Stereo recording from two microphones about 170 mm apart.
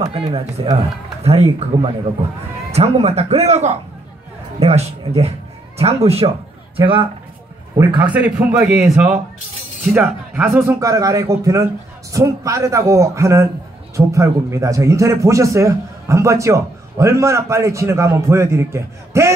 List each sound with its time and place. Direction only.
0.0 s speech: 25° right (ahead or behind)
1.2 s speech: 40° right (ahead or behind)
7.7 s a man's voice: 20° right (ahead or behind)